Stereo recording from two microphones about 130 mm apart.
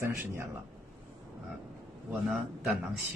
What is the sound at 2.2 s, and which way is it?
Speech, 5° right (ahead or behind).